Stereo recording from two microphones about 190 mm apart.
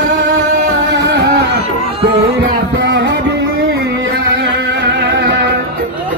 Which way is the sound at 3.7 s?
60° right (ahead or behind).